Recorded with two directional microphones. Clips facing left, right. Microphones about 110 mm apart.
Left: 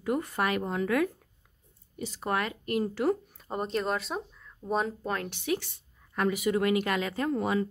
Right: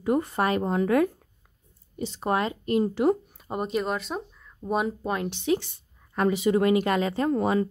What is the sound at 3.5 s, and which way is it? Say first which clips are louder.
A woman's voice: right 2 dB; 5° right (ahead or behind).